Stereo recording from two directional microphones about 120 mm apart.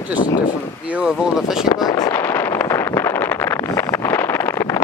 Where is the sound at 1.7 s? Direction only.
30° left (ahead or behind).